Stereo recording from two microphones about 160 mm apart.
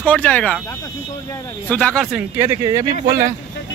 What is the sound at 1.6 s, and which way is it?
Speech, 10° left (ahead or behind).